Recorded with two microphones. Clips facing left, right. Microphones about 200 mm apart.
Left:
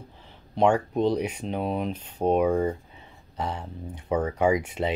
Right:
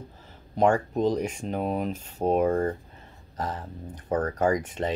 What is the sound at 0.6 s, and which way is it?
Speech, 5° right (ahead or behind).